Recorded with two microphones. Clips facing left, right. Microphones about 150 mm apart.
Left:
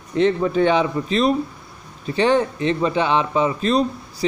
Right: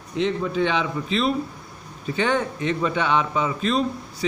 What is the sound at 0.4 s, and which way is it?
A man's voice, 45° left (ahead or behind).